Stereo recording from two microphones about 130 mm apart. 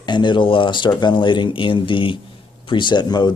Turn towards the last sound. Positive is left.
turn(degrees=35)  # may be behind; listen again after turning